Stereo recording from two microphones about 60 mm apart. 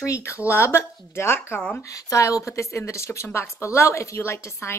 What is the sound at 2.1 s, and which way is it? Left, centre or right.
A woman's voice, left.